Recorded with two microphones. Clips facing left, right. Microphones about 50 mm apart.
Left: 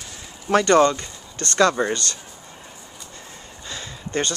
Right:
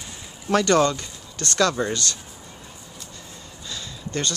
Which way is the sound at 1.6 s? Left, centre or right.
Centre.